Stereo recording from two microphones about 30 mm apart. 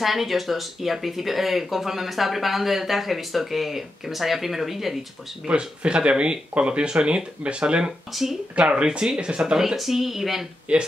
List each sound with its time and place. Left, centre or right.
0.0 s speech: centre
5.5 s speech: right
7.0 s speech: right
7.4 s speech: right
8.1 s speech: centre
8.5 s speech: right
9.4 s speech: centre
9.8 s speech: centre
10.7 s speech: right